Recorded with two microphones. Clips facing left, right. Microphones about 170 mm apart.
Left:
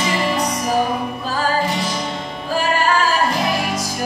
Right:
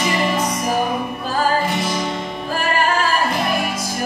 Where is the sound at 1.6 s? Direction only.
55° right (ahead or behind).